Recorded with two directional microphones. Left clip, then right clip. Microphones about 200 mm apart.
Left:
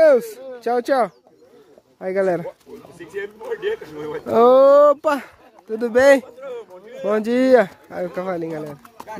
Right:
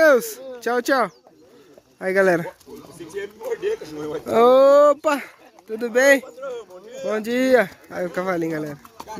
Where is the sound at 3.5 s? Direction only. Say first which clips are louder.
Right 1 dB; 15° left (ahead or behind).